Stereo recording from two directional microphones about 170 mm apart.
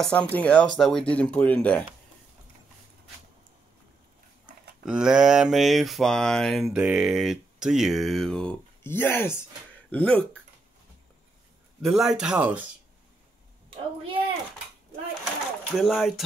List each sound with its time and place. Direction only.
0.0 s speech: 5° left (ahead or behind)
4.8 s speech: 5° right (ahead or behind)
6.7 s speech: 10° right (ahead or behind); by 10.2 s 10° left (ahead or behind)
11.8 s speech: centre (ahead or behind)
13.7 s a child's voice: 30° right (ahead or behind)
15.7 s speech: centre (ahead or behind)